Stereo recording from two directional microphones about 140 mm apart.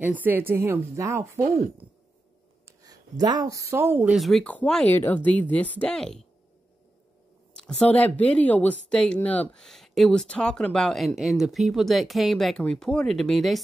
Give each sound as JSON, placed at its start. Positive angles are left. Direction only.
{"t": 0.0, "sound": "a woman's voice", "side_deg": -10}
{"t": 2.6, "sound": "speech", "side_deg": -25}
{"t": 4.2, "sound": "speech", "side_deg": 0}
{"t": 7.5, "sound": "speech", "side_deg": 5}